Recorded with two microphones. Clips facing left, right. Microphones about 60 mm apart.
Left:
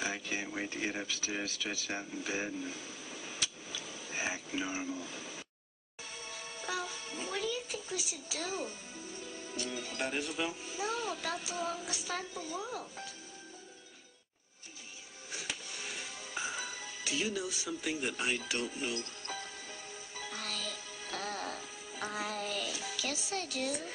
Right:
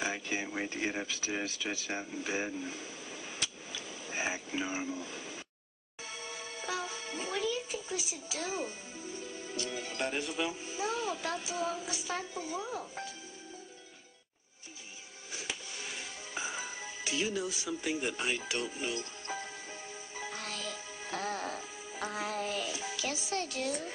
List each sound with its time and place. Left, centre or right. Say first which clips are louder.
0.0 s a sound: right 2 dB; centre
7.3 s a sound: right 3 dB; centre
9.1 s music: right 3 dB; right
9.7 s speech: right 1 dB; right
10.0 s a child's voice: right 1 dB; centre
12.4 s speech: right 2 dB; right
15.3 s music: right 1 dB; centre
16.5 s music: right 1 dB; right
17.0 s a child's voice: right 2 dB; centre
18.9 s music: right 2 dB; right; by 23.1 s centre
23.1 s a child's voice: right 2 dB; centre